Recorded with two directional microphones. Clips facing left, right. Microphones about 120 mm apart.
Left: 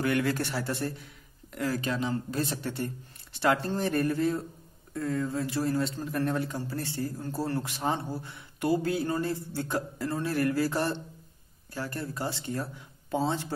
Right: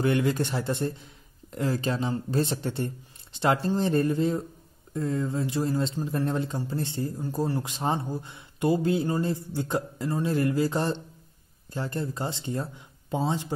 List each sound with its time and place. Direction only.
0.0 s a man's voice: 20° right (ahead or behind)
3.5 s a man's voice: 15° right (ahead or behind)